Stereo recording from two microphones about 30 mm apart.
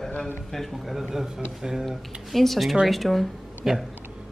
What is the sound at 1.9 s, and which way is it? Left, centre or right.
A man's voice, centre.